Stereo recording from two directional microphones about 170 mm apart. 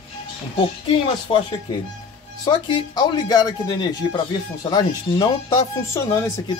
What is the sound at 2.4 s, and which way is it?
Speech, 25° left (ahead or behind).